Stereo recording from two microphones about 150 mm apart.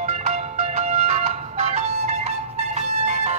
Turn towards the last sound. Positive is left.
turn(degrees=-55)  # may be behind; listen again after turning